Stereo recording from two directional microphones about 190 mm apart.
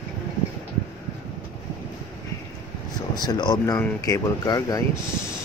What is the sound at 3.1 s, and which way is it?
Speech, 20° left (ahead or behind).